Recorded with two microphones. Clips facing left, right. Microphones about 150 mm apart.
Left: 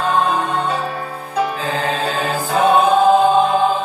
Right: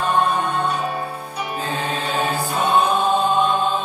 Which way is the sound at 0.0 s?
90° left.